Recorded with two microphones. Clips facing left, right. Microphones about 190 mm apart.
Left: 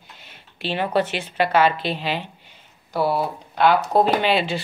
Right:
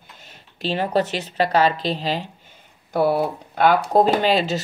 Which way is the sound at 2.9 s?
50° right (ahead or behind).